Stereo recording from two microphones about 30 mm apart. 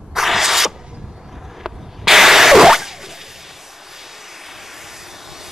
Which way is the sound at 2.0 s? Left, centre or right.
Centre.